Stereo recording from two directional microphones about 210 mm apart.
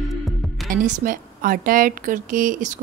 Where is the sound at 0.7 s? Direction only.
40° right (ahead or behind).